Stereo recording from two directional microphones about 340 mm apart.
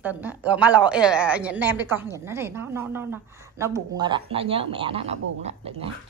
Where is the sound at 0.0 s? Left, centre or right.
Centre.